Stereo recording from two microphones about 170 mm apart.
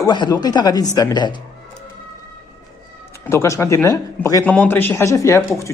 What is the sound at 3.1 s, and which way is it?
Speech, 15° left (ahead or behind).